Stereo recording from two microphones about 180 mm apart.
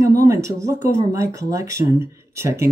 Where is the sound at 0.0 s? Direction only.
20° right (ahead or behind).